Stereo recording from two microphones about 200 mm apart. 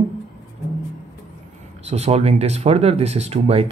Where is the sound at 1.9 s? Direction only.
30° right (ahead or behind).